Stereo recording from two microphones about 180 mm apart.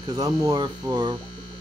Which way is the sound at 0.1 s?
20° right (ahead or behind).